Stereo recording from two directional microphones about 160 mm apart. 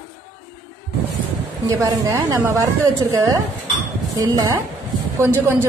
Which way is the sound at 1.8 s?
20° right (ahead or behind).